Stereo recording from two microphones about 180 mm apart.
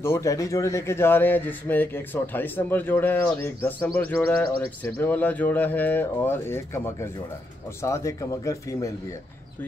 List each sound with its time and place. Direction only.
0.0 s speech: 15° left (ahead or behind)